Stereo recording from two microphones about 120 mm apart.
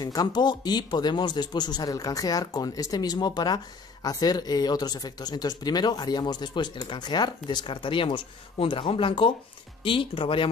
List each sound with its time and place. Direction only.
0.0 s a man's voice: 30° left (ahead or behind)